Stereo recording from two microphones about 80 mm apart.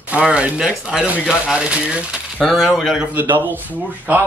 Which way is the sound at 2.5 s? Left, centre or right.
Centre.